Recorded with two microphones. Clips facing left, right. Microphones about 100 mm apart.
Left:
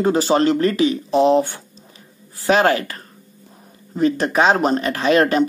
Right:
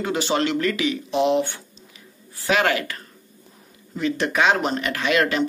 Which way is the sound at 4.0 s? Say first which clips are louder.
Left 5 dB; 40° left (ahead or behind).